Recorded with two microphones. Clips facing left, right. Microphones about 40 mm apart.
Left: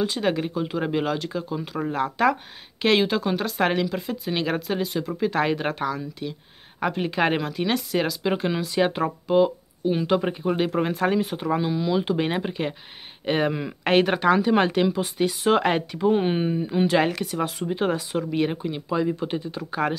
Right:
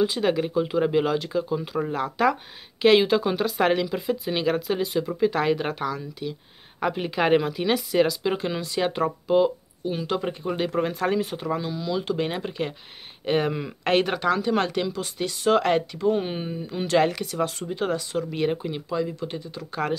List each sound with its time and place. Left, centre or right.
0.0 s speech: centre
11.5 s speech: centre
18.9 s speech: centre